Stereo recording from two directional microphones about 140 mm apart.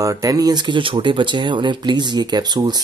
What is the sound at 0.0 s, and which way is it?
Speech, 25° right (ahead or behind).